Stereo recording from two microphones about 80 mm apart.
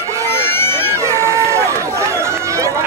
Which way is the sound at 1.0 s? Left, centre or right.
Right.